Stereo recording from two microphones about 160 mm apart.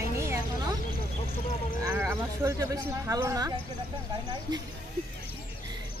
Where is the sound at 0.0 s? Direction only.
20° right (ahead or behind).